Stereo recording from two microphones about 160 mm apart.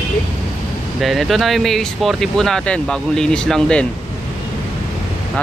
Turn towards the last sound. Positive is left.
turn(degrees=5)  # may be behind; listen again after turning